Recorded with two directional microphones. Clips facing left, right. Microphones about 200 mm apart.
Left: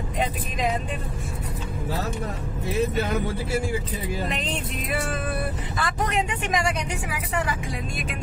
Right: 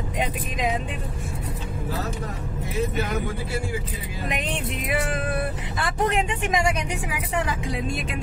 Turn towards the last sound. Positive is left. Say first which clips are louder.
# right 1 dB
turn(degrees=-20)  # may be behind; listen again after turning